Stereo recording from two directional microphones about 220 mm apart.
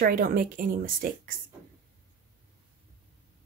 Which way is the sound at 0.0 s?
40° right (ahead or behind).